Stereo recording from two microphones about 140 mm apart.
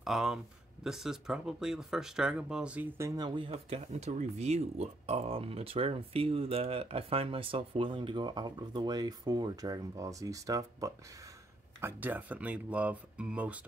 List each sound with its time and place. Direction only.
0.0 s speech: 5° right (ahead or behind); by 10.9 s 25° right (ahead or behind)
11.8 s speech: 15° right (ahead or behind)